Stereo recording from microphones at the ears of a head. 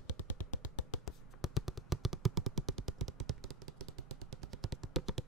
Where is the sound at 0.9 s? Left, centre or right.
Left.